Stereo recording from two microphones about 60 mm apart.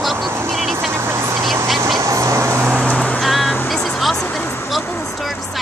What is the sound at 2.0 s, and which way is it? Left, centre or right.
Vehicle, right.